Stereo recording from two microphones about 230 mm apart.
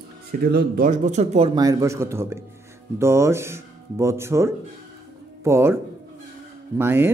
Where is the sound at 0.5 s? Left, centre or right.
Right; by 5.8 s centre.